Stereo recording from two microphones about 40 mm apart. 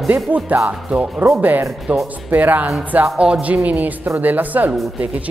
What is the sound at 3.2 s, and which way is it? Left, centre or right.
Speech, right.